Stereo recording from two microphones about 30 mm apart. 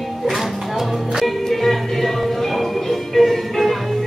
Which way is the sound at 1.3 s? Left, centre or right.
Centre.